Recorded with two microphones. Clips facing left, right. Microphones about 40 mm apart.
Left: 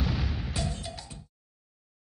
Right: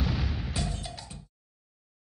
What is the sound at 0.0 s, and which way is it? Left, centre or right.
Music, centre.